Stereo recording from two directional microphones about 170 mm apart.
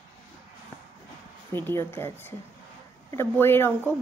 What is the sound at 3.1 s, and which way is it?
Speech, 15° left (ahead or behind).